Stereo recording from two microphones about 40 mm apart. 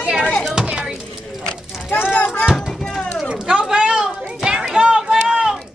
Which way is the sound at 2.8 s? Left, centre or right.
Centre.